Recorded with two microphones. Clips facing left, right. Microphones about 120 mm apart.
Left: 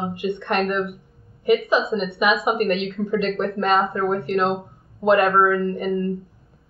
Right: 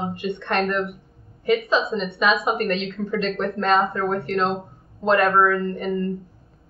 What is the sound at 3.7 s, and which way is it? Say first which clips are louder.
Speech: right 1 dB; centre (ahead or behind).